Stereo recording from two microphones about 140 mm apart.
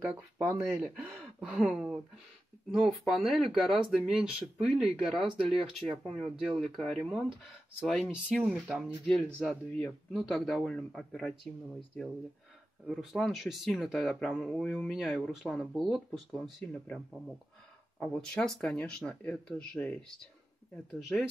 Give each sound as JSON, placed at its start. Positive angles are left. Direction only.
{"t": 0.0, "sound": "speech", "side_deg": -20}
{"t": 0.6, "sound": "speech", "side_deg": 0}
{"t": 8.4, "sound": "speech", "side_deg": -5}